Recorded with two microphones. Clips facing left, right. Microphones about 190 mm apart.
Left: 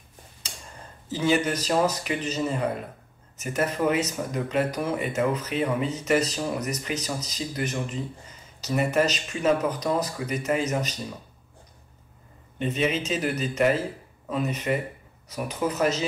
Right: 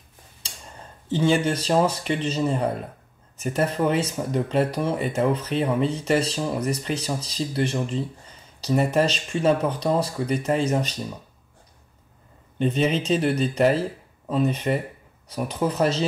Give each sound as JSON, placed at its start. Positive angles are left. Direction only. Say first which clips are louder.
{"t": 1.0, "sound": "speech", "louder": "right 3 dB", "side_deg": -30}
{"t": 12.5, "sound": "speech", "louder": "right 4 dB", "side_deg": -35}